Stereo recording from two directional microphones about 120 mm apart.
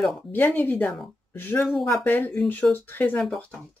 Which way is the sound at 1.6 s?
Centre (ahead or behind).